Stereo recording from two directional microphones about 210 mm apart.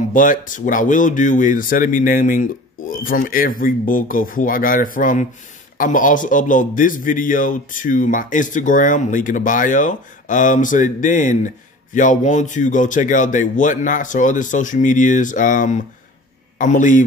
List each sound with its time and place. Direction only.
0.1 s a man's voice: 40° left (ahead or behind)